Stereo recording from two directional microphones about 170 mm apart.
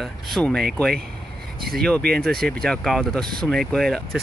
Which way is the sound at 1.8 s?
5° left (ahead or behind).